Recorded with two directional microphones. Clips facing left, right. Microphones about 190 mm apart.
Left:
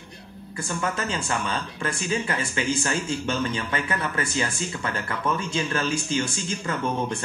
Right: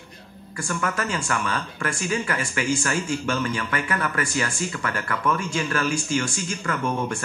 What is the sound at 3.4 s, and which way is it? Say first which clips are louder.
Speech: right 1 dB; 30° left (ahead or behind).